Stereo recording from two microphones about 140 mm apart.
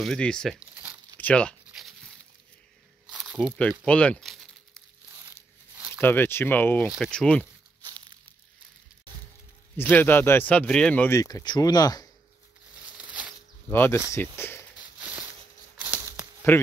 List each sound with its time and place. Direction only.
0.0 s speech: 5° left (ahead or behind)
1.1 s tearing: 10° left (ahead or behind)
1.7 s a sound: centre (ahead or behind)
3.1 s snake: 5° right (ahead or behind)
3.8 s crumpling: 10° left (ahead or behind)
5.9 s speech: 15° left (ahead or behind)
7.8 s crumpling: 35° right (ahead or behind)
9.8 s speech: 15° left (ahead or behind)
11.1 s speech: 25° left (ahead or behind)
12.8 s a sound: 10° right (ahead or behind)
13.7 s speech: 15° left (ahead or behind)
14.8 s a sound: 10° right (ahead or behind)
16.5 s speech: 15° left (ahead or behind)